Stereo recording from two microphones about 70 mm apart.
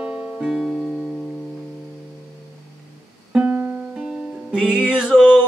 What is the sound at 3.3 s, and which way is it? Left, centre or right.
Music, right.